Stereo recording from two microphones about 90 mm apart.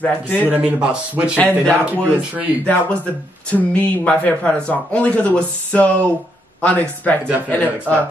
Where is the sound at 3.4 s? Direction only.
15° left (ahead or behind).